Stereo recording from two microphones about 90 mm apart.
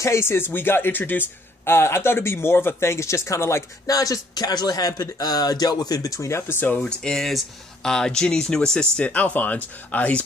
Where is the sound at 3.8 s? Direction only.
40° left (ahead or behind); by 6.8 s 25° left (ahead or behind).